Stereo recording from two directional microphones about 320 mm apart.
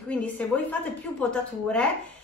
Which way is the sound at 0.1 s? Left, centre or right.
Centre.